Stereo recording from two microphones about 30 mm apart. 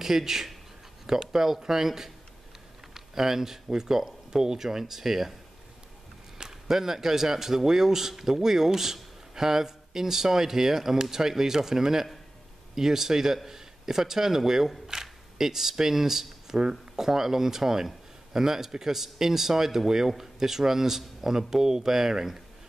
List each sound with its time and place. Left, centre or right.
0.0 s speech: centre
6.3 s speech: centre
16.5 s speech: right
17.0 s speech: centre